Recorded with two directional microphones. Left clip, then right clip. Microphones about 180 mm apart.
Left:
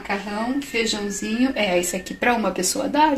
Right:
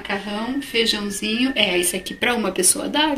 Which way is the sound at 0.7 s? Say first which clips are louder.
Right 7 dB; 35° left (ahead or behind).